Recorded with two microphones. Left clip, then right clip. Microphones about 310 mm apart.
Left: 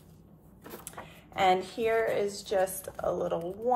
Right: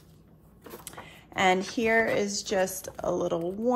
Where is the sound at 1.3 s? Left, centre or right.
Right.